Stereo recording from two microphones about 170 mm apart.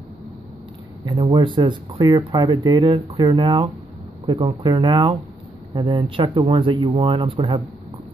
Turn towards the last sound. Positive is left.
turn(degrees=-30)  # may be behind; listen again after turning